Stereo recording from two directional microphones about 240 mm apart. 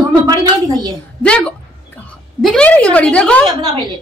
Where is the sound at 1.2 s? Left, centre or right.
Centre.